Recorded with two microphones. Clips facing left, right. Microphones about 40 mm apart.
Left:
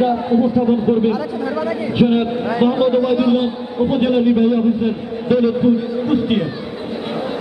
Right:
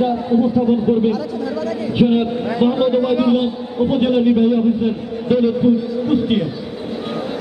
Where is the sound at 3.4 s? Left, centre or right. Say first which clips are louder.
Even; centre.